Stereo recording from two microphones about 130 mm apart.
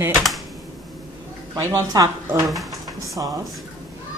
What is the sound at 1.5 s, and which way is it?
Speech, 30° right (ahead or behind).